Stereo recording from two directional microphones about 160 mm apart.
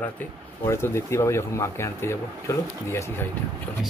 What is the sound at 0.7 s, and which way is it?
Speech, 15° left (ahead or behind).